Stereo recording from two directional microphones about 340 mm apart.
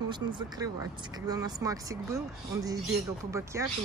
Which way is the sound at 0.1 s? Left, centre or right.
Centre.